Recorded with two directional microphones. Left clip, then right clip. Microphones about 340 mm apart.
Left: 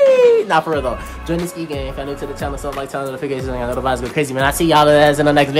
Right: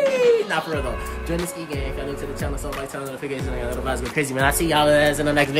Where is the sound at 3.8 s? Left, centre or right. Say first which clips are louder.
Left 5 dB; centre.